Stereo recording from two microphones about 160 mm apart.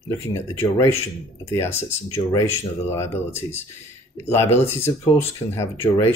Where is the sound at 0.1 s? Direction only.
15° left (ahead or behind).